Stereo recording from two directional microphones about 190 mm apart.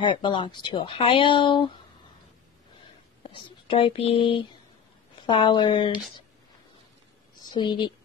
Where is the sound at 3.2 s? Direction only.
30° left (ahead or behind).